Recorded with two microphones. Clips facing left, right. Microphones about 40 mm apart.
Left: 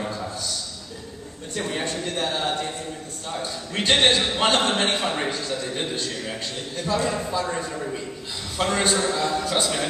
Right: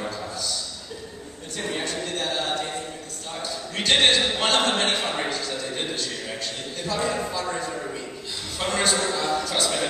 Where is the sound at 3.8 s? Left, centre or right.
Centre.